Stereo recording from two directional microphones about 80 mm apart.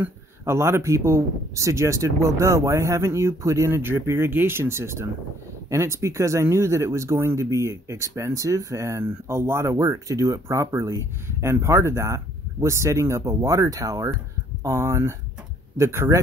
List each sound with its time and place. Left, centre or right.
0.5 s speech: right